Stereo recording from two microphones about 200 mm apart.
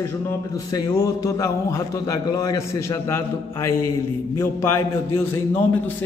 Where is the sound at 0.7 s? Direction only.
15° left (ahead or behind).